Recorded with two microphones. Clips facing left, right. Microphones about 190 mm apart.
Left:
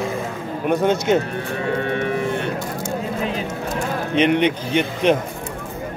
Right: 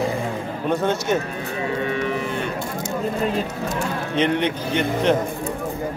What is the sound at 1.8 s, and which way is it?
Livestock, 55° left (ahead or behind).